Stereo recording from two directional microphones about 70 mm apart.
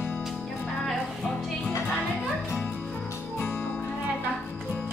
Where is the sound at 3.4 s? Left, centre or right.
Left.